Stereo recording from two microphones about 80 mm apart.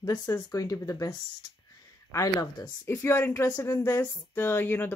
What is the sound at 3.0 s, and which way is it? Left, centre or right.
Speech, left.